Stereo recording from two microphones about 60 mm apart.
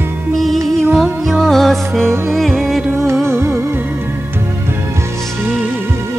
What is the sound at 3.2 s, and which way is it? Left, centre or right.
Music, right.